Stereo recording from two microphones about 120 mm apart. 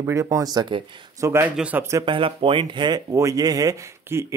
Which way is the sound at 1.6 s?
10° right (ahead or behind).